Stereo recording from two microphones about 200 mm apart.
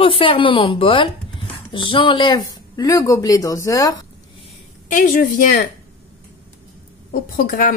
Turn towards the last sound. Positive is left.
turn(degrees=45)  # may be behind; listen again after turning